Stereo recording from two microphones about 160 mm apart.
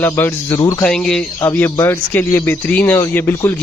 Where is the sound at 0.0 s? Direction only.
15° left (ahead or behind).